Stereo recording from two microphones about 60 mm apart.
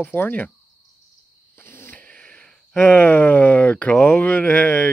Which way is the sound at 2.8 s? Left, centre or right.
Left.